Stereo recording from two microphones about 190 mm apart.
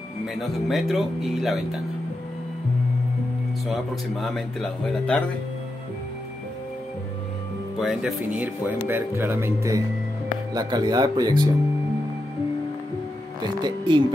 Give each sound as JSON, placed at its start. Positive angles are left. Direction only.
{"t": 0.4, "sound": "speech", "side_deg": 0}
{"t": 3.6, "sound": "speech", "side_deg": 0}
{"t": 7.8, "sound": "speech", "side_deg": 0}
{"t": 13.4, "sound": "music", "side_deg": -20}